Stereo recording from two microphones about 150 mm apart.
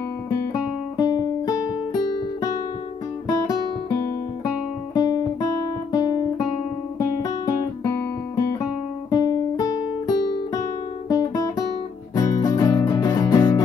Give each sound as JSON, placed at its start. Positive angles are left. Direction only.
{"t": 0.3, "sound": "music", "side_deg": 25}
{"t": 3.3, "sound": "music", "side_deg": 25}
{"t": 4.9, "sound": "guitar", "side_deg": 25}
{"t": 7.2, "sound": "music", "side_deg": 25}
{"t": 9.1, "sound": "guitar", "side_deg": 25}
{"t": 12.2, "sound": "music", "side_deg": 25}